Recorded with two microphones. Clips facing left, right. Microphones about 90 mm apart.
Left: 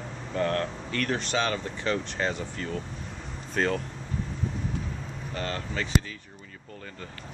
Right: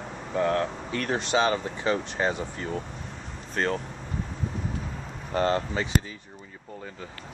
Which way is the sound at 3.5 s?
Centre (ahead or behind).